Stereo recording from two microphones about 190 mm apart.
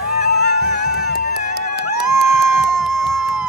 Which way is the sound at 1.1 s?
55° left (ahead or behind).